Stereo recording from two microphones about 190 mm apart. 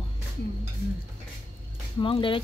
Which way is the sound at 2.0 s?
25° left (ahead or behind).